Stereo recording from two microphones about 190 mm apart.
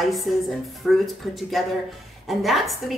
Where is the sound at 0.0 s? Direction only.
Centre (ahead or behind).